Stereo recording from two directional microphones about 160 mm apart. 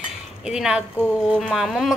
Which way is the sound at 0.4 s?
5° right (ahead or behind).